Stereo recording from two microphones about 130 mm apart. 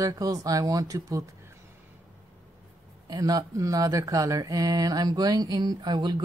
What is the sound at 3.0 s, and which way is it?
A woman's voice, 30° right (ahead or behind).